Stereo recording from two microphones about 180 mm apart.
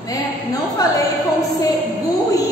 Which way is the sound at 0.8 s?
20° left (ahead or behind).